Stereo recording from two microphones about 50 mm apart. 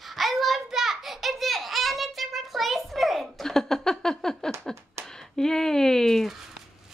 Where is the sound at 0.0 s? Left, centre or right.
Centre.